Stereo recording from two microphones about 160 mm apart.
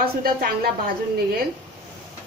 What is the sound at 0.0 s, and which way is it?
A woman's voice, 70° right (ahead or behind).